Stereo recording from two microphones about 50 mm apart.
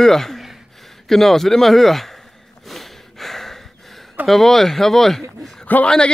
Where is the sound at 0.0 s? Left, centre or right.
Centre.